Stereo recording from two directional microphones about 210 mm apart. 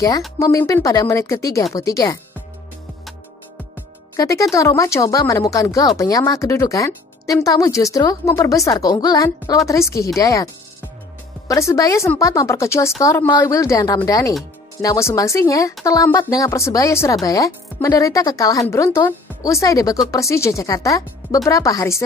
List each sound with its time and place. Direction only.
0.4 s speech: 15° left (ahead or behind)
4.2 s speech: 15° left (ahead or behind)